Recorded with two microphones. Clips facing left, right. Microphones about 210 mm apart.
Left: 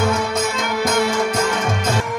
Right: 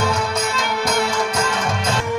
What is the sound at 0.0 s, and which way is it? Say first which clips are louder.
Music: left 2 dB; 55° left (ahead or behind).